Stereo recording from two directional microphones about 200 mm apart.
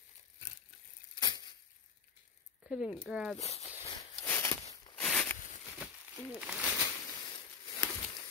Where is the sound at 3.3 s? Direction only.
30° left (ahead or behind).